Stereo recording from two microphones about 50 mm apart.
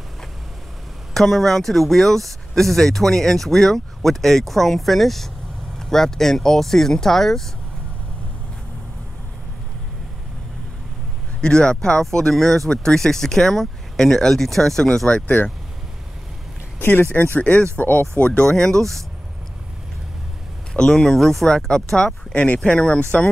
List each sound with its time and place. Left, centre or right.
1.1 s speech: centre
11.4 s speech: centre
16.8 s speech: left
17.1 s speech: left
18.2 s speech: left
18.5 s speech: centre
20.7 s speech: centre
22.3 s speech: left